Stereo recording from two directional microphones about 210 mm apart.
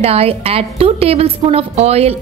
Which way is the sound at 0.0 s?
30° right (ahead or behind).